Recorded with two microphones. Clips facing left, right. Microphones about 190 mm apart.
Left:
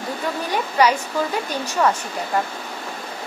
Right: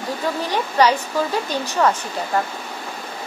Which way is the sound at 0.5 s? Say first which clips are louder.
Right 1 dB; 10° left (ahead or behind).